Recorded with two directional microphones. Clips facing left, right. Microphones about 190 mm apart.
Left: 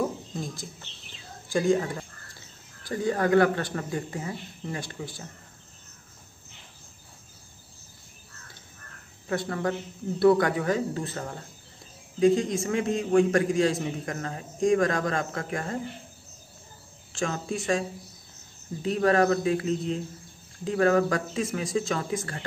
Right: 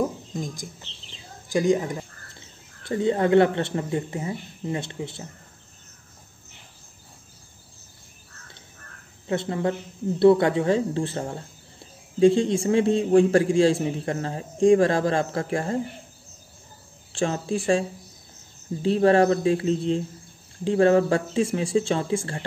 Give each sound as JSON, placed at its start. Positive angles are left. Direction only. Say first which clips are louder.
{"t": 1.5, "sound": "speech", "louder": "right 2 dB", "side_deg": -15}
{"t": 9.3, "sound": "speech", "louder": "right 3 dB", "side_deg": -25}
{"t": 17.1, "sound": "speech", "louder": "right 5 dB", "side_deg": -30}